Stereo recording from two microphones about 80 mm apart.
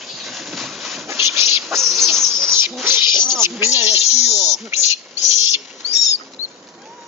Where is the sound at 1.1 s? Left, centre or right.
Right.